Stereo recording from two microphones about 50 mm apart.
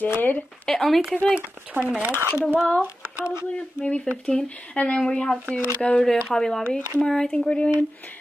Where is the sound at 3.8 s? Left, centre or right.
Left.